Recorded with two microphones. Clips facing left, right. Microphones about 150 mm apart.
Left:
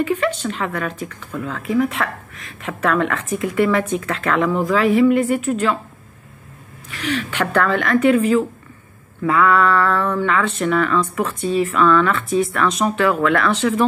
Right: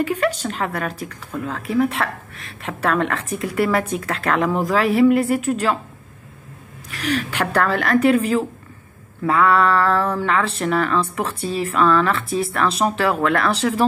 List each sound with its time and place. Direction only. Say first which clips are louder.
0.0 s speech: left 1 dB; 40° right (ahead or behind)
6.9 s speech: even; 40° right (ahead or behind)